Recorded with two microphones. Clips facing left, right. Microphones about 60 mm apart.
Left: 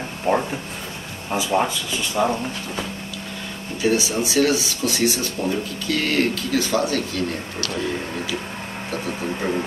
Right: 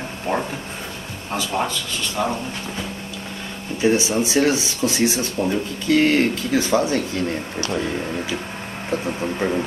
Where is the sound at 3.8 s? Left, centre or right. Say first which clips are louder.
Right 2 dB; right.